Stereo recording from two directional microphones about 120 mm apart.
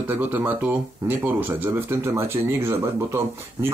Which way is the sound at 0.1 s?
15° right (ahead or behind).